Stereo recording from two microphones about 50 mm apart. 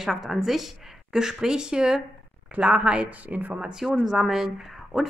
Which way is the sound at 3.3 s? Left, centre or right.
Right.